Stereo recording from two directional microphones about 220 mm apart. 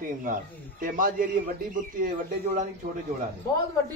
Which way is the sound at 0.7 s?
40° right (ahead or behind).